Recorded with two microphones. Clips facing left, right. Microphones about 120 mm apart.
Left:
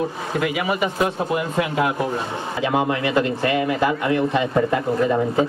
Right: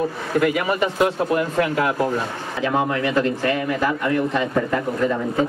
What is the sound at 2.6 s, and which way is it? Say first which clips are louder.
Speech: even; 15° left (ahead or behind).